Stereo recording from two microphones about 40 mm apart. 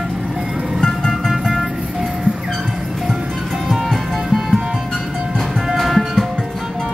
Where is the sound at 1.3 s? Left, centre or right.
Centre.